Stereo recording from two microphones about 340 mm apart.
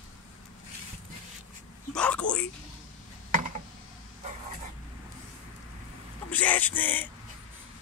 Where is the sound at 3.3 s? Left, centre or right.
Right.